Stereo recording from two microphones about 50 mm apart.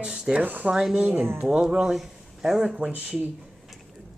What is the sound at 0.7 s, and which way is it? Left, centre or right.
A child's voice, centre.